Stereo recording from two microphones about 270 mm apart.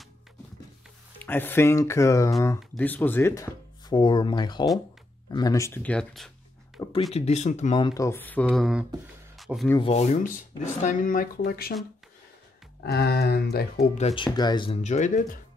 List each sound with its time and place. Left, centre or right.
1.2 s speech: centre
6.8 s a sound: centre
7.2 s speech: left; by 9.8 s centre
9.8 s speech: left
12.8 s speech: left